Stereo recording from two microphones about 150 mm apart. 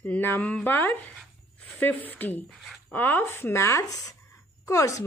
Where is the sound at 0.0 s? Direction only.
10° left (ahead or behind).